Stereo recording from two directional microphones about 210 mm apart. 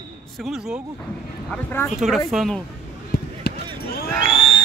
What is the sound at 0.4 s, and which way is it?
Speech, centre (ahead or behind).